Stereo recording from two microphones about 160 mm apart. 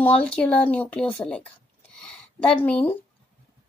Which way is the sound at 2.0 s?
5° left (ahead or behind).